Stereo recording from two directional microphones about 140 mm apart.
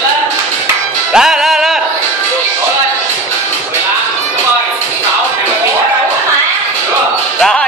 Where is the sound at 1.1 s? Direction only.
5° right (ahead or behind).